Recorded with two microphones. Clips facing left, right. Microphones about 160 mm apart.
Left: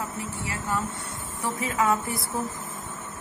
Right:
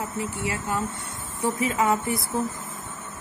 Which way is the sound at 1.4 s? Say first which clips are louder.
Right 3 dB; 20° right (ahead or behind).